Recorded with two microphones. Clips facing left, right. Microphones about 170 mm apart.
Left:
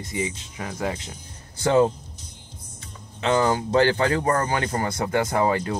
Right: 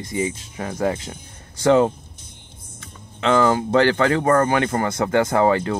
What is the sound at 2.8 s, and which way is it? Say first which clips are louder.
Speech: right 4 dB; 50° right (ahead or behind).